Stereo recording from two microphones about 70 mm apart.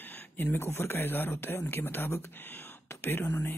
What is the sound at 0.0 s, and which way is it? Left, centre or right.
Speech, left.